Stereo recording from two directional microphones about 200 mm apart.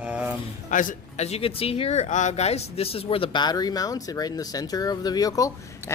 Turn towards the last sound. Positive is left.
turn(degrees=15)  # may be behind; listen again after turning